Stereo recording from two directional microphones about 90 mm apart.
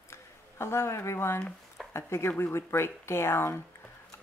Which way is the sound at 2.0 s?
30° left (ahead or behind).